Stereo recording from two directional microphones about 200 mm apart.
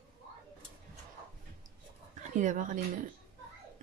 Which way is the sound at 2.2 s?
40° right (ahead or behind).